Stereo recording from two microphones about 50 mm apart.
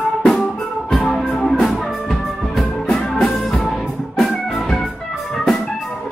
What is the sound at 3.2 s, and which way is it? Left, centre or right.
Music, centre.